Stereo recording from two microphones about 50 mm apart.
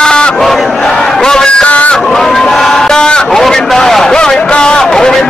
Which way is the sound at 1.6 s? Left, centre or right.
Left.